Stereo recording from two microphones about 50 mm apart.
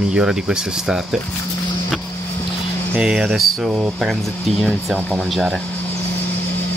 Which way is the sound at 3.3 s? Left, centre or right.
Centre.